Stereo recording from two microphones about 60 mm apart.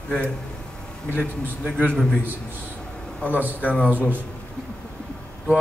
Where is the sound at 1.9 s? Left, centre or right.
Centre.